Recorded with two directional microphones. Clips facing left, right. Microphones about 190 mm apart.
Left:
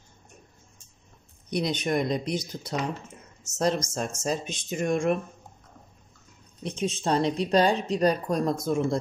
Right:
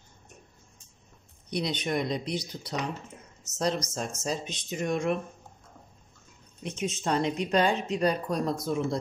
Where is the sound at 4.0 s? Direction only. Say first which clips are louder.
Left 3 dB; 50° left (ahead or behind).